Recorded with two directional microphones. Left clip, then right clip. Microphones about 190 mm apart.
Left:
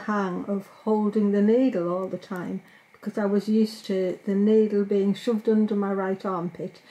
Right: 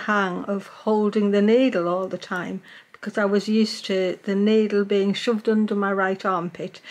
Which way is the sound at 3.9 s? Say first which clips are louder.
Right 4 dB; 10° left (ahead or behind).